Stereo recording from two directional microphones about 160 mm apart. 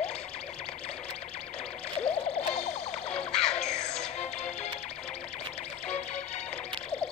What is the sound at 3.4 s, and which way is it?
Music, 45° left (ahead or behind).